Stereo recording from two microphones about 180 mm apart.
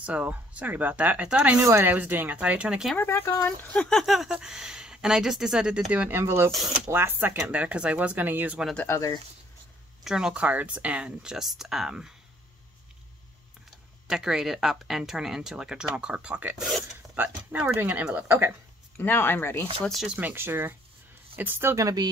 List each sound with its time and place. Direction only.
0.0 s speech: 5° right (ahead or behind)
3.0 s speech: 15° left (ahead or behind)
3.7 s speech: 5° left (ahead or behind)
8.7 s speech: 15° left (ahead or behind)
10.0 s speech: 5° right (ahead or behind)
14.0 s speech: 5° right (ahead or behind)
18.9 s speech: 15° left (ahead or behind)
19.8 s speech: centre (ahead or behind); by 22.1 s 20° right (ahead or behind)